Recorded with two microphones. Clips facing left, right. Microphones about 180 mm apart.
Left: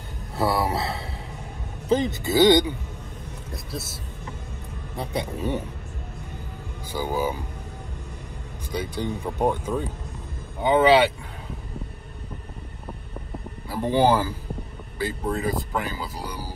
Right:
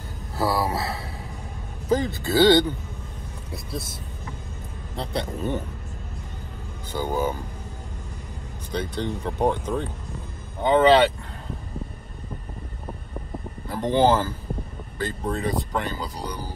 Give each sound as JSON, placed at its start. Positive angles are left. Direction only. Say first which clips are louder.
{"t": 0.4, "sound": "speech", "louder": "left 1 dB", "side_deg": 25}
{"t": 4.9, "sound": "speech", "louder": "even", "side_deg": 10}
{"t": 6.9, "sound": "speech", "louder": "right 1 dB", "side_deg": 10}
{"t": 8.7, "sound": "speech", "louder": "even", "side_deg": 10}
{"t": 13.7, "sound": "speech", "louder": "right 1 dB", "side_deg": 10}